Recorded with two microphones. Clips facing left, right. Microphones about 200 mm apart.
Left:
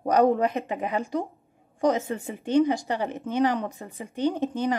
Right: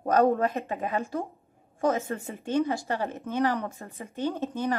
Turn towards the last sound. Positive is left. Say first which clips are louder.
# left 4 dB
turn(degrees=15)  # may be behind; listen again after turning